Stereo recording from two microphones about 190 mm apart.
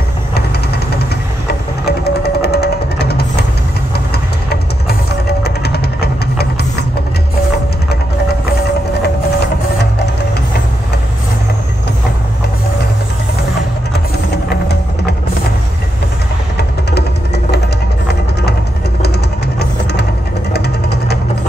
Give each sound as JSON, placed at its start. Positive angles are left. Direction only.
{"t": 1.5, "sound": "music", "side_deg": 55}
{"t": 4.1, "sound": "engine", "side_deg": 55}
{"t": 5.4, "sound": "music", "side_deg": 60}
{"t": 19.6, "sound": "music", "side_deg": 60}
{"t": 20.5, "sound": "a sound", "side_deg": 60}